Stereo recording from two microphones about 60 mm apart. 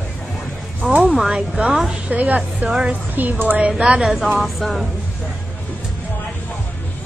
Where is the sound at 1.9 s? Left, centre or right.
Right.